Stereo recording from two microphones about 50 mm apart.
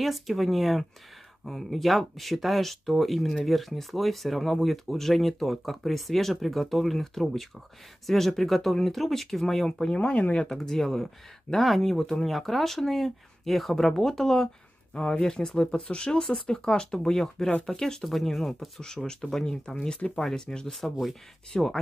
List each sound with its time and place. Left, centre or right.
0.0 s speech: centre